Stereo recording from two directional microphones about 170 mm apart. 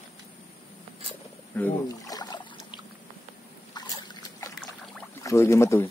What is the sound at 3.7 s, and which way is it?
Boat, 25° left (ahead or behind).